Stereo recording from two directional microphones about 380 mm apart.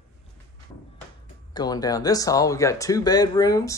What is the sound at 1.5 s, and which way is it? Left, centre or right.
Speech, centre.